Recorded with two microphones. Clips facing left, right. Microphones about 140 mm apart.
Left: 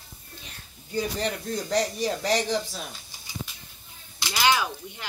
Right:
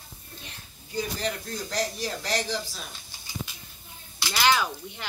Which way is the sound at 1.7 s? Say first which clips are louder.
Left 5 dB; centre (ahead or behind).